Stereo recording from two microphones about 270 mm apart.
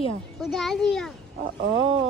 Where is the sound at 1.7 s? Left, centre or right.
Centre.